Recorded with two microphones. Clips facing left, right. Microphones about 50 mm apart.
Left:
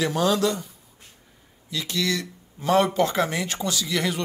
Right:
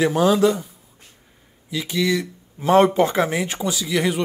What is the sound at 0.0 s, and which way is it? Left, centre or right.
Speech, centre.